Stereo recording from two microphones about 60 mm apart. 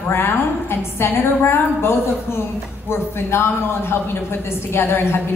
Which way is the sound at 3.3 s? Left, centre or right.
Left.